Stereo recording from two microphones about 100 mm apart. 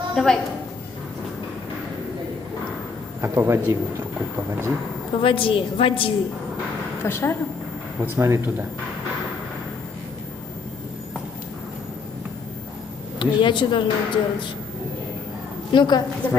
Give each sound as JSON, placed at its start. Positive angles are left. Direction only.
{"t": 0.1, "sound": "a woman's voice", "side_deg": 5}
{"t": 3.2, "sound": "a man's voice", "side_deg": -25}
{"t": 5.2, "sound": "speech", "side_deg": 60}
{"t": 7.0, "sound": "speech", "side_deg": 25}
{"t": 8.0, "sound": "a man's voice", "side_deg": -25}
{"t": 13.2, "sound": "speech", "side_deg": 55}
{"t": 15.7, "sound": "a woman's voice", "side_deg": 50}